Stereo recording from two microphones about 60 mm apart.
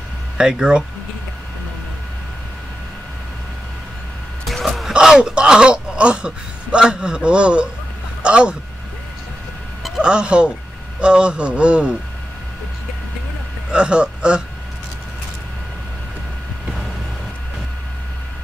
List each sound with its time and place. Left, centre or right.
0.4 s a man's voice: centre
4.5 s speech: centre
10.0 s a man's voice: centre
13.7 s speech: centre